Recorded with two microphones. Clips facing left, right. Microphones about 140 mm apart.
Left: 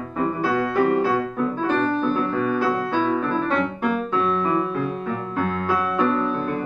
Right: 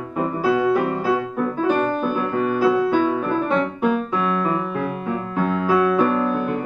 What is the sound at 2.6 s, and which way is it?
Music, 5° right (ahead or behind).